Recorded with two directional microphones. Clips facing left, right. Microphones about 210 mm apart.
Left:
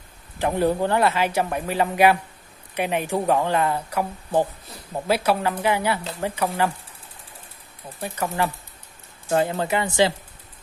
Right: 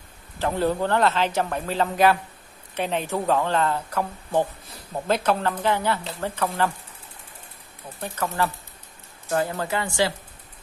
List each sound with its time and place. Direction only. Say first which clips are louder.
0.4 s a man's voice: left 2 dB; 15° left (ahead or behind)
8.0 s a man's voice: left 1 dB; 15° left (ahead or behind)